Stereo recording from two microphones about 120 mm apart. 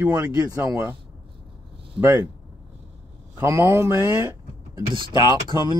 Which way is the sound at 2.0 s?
20° right (ahead or behind).